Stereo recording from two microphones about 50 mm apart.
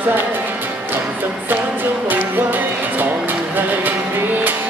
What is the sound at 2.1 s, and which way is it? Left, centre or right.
Music, right.